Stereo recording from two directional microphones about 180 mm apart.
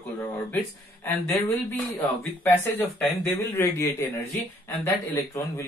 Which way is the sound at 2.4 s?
10° left (ahead or behind).